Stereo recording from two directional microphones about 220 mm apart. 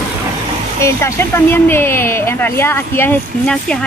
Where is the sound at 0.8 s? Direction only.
10° left (ahead or behind).